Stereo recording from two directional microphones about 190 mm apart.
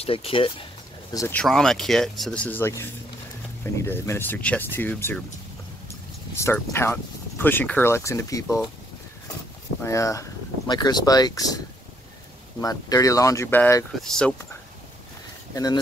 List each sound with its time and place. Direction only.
0.0 s speech: 30° left (ahead or behind)
1.1 s speech: 15° left (ahead or behind)
1.4 s speech: 5° left (ahead or behind)
6.3 s speech: 15° left (ahead or behind)
9.8 s speech: 15° left (ahead or behind)
15.5 s speech: 20° left (ahead or behind)